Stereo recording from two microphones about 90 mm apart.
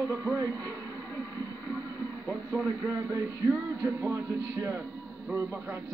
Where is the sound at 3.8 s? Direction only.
25° right (ahead or behind).